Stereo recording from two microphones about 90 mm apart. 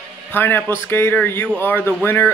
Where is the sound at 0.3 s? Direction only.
20° left (ahead or behind).